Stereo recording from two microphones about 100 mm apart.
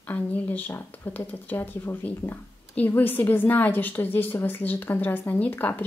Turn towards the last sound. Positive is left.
turn(degrees=20)  # may be behind; listen again after turning